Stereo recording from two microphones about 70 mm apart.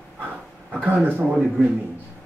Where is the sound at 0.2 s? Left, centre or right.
Right.